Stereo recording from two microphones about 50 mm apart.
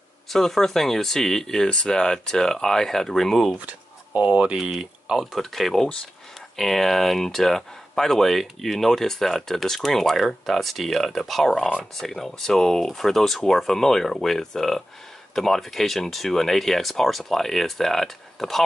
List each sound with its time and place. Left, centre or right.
0.3 s speech: centre
3.5 s a sound: right
4.3 s speech: right
4.6 s speech: centre
5.2 s speech: centre